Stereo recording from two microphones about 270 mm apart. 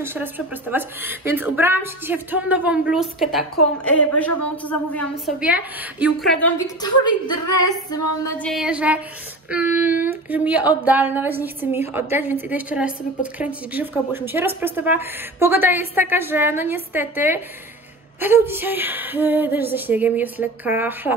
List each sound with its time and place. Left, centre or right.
0.0 s a woman's voice: centre
5.4 s a woman's voice: centre
6.8 s a woman's voice: centre